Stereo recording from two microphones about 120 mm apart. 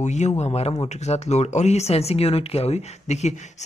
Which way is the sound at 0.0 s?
80° left.